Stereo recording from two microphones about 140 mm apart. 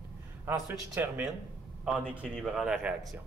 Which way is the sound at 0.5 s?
10° right (ahead or behind).